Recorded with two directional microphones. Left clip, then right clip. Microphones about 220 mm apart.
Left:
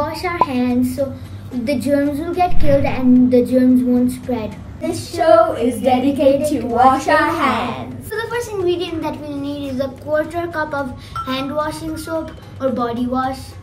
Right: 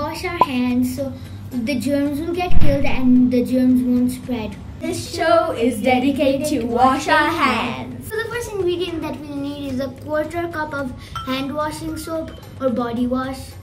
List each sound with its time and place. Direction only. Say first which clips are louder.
0.0 s child singing: left 1 dB; centre (ahead or behind)